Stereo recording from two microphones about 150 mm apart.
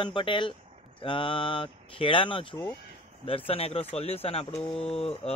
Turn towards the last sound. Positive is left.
turn(degrees=45)  # may be behind; listen again after turning